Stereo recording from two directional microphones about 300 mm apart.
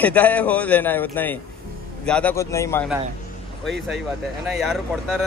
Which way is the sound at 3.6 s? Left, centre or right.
Right.